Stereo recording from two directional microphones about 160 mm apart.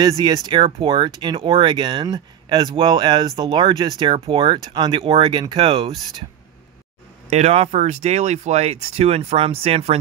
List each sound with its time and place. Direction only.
0.2 s speech: 30° right (ahead or behind)
7.2 s speech: 45° right (ahead or behind)